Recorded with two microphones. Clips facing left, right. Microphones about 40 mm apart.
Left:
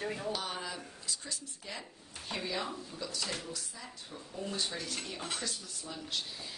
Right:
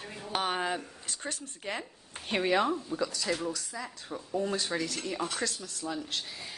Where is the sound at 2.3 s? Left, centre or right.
Right.